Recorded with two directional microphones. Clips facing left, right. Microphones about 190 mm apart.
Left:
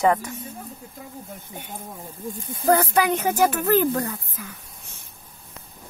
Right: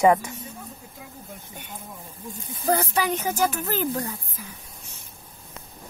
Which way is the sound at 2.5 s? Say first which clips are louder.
Left 4 dB; 55° left (ahead or behind).